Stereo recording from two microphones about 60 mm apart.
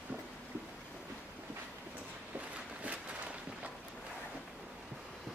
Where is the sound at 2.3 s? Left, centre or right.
Right.